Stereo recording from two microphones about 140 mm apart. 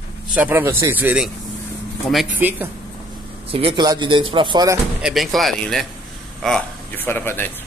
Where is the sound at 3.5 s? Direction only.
35° right (ahead or behind).